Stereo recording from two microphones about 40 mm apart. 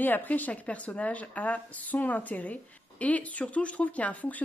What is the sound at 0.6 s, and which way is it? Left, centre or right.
Speech, left.